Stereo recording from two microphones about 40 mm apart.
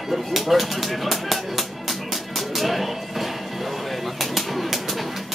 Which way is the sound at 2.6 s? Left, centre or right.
Centre.